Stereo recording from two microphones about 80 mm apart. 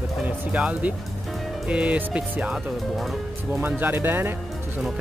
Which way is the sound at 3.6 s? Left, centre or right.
Right.